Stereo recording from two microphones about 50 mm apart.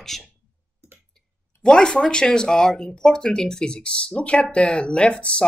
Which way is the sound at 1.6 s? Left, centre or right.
Centre.